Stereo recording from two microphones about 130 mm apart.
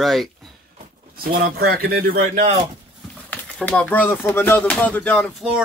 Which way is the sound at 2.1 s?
65° right (ahead or behind).